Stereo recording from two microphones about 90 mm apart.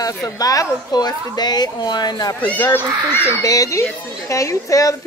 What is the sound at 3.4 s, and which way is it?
Speech, 40° left (ahead or behind).